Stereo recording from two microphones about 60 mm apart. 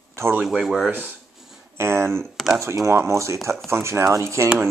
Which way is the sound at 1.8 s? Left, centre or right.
Right.